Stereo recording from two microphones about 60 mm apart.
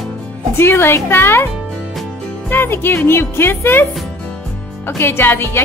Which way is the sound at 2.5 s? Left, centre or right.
Left.